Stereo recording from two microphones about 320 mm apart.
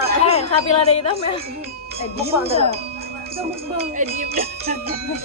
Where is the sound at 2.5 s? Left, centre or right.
Centre.